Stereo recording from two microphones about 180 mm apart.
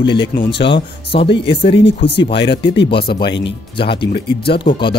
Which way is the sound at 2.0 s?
75° left (ahead or behind).